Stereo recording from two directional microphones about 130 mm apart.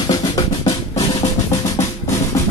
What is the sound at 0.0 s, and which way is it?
Drum, 30° left (ahead or behind).